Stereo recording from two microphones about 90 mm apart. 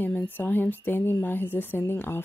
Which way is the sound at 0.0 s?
20° left (ahead or behind).